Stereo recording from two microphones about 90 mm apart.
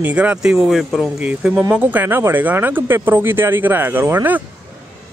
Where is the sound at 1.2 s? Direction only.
15° right (ahead or behind).